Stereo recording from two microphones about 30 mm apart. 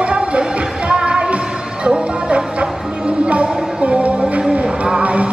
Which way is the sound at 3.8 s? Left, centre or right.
Right.